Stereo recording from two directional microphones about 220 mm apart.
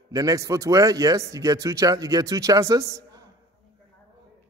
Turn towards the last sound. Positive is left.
turn(degrees=-15)  # may be behind; listen again after turning